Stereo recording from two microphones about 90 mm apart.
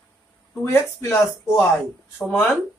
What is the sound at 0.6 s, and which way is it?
Speech, 30° left (ahead or behind).